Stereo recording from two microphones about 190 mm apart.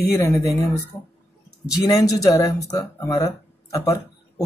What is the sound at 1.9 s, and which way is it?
Speech, 20° left (ahead or behind).